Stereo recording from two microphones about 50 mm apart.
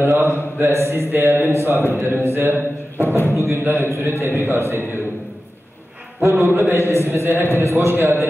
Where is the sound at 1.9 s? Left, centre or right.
Right.